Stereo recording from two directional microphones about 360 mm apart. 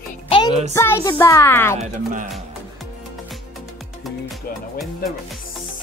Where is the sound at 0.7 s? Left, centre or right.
Centre.